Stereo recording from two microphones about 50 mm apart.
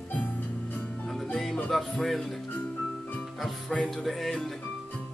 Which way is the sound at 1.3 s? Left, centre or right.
Centre.